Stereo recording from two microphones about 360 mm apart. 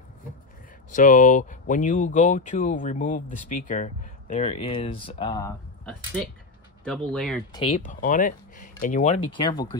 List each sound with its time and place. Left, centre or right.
0.9 s speech: left; by 7.6 s centre
7.6 s speech: left